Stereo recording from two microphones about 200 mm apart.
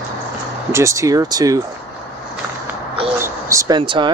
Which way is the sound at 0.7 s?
15° right (ahead or behind).